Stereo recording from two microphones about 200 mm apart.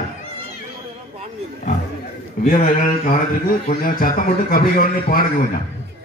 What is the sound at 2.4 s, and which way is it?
A man's voice, 45° left (ahead or behind).